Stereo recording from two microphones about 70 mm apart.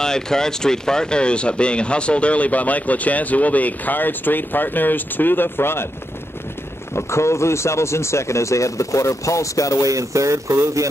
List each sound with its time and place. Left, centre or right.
0.0 s speech: centre; by 5.9 s left
7.0 s speech: left
9.8 s speech: right